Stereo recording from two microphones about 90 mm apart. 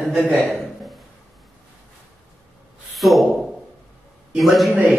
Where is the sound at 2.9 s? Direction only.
Centre (ahead or behind).